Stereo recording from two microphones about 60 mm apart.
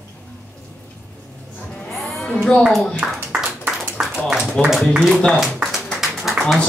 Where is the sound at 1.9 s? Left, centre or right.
Centre.